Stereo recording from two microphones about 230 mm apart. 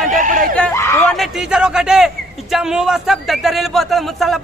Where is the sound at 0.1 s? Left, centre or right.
Right.